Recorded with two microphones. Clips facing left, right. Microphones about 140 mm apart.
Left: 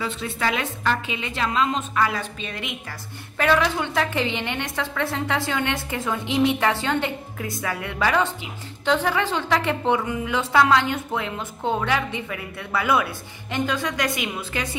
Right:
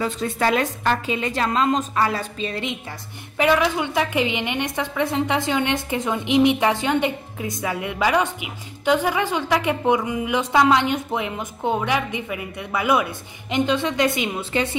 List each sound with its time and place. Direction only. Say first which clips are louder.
0.0 s a woman's voice: right 4 dB; 40° right (ahead or behind)
3.3 s a woman's voice: right 2 dB; 15° right (ahead or behind)